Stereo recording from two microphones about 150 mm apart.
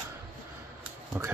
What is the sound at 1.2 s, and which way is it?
Speech, 10° right (ahead or behind).